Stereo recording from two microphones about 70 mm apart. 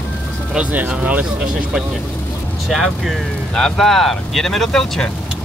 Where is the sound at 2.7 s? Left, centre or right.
Centre.